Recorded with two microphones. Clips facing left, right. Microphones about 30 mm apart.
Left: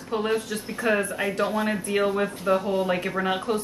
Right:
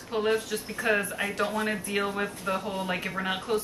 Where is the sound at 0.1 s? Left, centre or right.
Centre.